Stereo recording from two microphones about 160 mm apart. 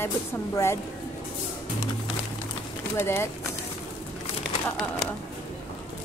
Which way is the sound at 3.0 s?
15° left (ahead or behind).